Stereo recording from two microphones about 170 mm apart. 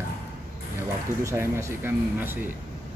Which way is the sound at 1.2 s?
15° right (ahead or behind).